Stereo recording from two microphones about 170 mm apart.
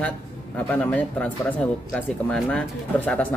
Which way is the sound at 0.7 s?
10° left (ahead or behind).